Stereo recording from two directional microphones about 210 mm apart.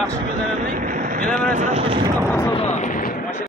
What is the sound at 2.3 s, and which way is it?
Speech, 15° left (ahead or behind).